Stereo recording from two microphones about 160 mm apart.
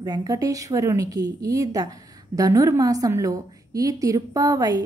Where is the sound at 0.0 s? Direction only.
25° right (ahead or behind).